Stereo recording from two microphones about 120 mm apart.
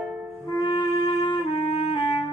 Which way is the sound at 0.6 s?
40° left (ahead or behind).